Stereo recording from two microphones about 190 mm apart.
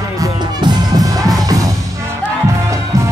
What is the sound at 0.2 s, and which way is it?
Music, 20° right (ahead or behind).